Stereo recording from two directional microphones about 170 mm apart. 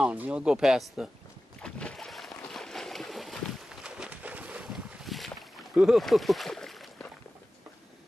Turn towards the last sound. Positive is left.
turn(degrees=0)  # may be behind; listen again after turning